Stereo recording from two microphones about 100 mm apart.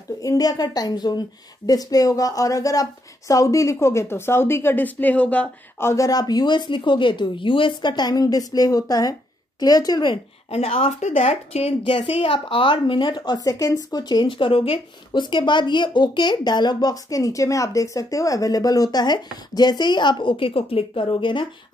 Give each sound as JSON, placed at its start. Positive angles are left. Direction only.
{"t": 0.2, "sound": "speech", "side_deg": 35}
{"t": 5.8, "sound": "speech", "side_deg": 30}
{"t": 10.5, "sound": "a woman's voice", "side_deg": 85}
{"t": 15.2, "sound": "speech", "side_deg": 50}